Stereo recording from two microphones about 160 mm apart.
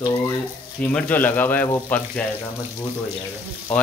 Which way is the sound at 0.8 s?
10° left (ahead or behind).